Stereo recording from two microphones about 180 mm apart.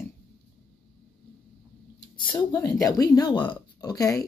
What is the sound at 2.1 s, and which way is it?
Speech, 25° left (ahead or behind).